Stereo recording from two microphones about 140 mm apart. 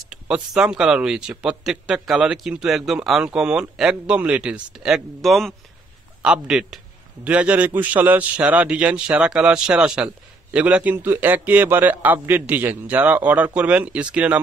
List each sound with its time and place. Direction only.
0.1 s a man's voice: 5° right (ahead or behind)